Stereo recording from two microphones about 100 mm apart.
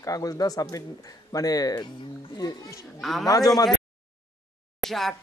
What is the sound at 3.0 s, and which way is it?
Speech, centre (ahead or behind).